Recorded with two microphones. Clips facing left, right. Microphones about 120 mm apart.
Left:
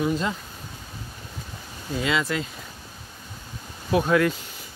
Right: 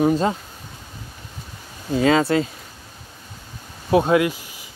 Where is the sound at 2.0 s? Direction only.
40° right (ahead or behind).